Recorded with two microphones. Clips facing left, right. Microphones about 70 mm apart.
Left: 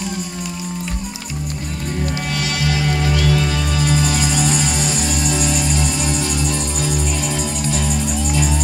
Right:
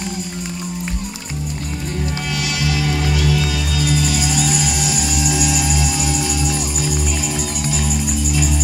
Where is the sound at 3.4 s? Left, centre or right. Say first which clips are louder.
Left 1 dB; centre.